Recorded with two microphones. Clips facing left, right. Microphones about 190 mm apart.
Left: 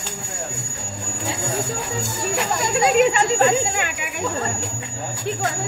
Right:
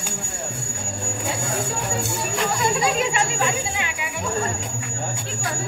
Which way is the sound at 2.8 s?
55° left (ahead or behind).